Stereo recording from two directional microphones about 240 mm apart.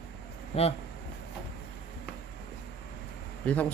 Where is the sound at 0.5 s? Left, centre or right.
Left.